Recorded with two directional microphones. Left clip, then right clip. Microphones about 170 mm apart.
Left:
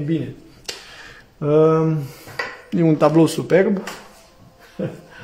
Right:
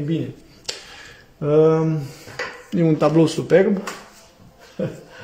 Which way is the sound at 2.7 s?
20° left (ahead or behind).